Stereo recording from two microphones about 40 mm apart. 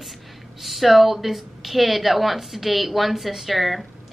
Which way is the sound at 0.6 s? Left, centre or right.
Centre.